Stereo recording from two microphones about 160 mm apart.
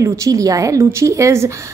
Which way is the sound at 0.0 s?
20° right (ahead or behind).